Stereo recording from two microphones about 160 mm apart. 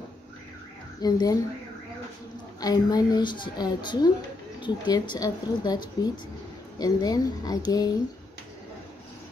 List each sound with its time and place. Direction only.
1.0 s a woman's voice: 25° left (ahead or behind)
2.6 s a woman's voice: 25° left (ahead or behind)